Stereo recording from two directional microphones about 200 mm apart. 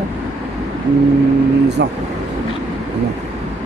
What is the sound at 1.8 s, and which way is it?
Speech, 60° right (ahead or behind).